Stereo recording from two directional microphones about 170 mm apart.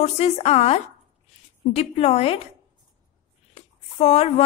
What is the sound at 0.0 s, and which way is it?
A woman's voice, 35° left (ahead or behind).